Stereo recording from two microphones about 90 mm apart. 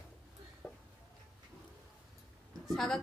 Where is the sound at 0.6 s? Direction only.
25° left (ahead or behind).